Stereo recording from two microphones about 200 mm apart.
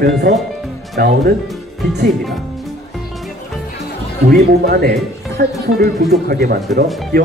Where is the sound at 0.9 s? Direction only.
55° right (ahead or behind).